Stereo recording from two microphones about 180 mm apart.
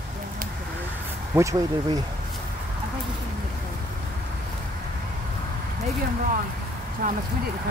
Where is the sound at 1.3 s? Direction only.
15° right (ahead or behind).